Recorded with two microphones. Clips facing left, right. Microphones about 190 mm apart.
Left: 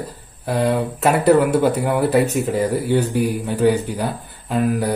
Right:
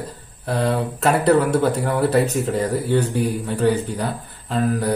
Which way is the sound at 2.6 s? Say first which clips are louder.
Left 2 dB; 30° left (ahead or behind).